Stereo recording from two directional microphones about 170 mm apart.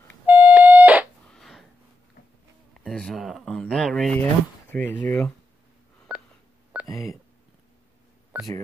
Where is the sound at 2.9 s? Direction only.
5° left (ahead or behind).